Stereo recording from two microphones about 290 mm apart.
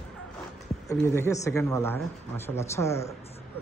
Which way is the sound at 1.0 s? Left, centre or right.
Centre.